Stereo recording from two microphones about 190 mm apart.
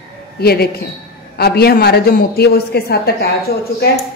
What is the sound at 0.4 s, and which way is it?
A woman's voice, 55° left (ahead or behind).